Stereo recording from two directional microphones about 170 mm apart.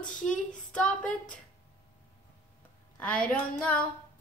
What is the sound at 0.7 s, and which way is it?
Speech, 5° left (ahead or behind).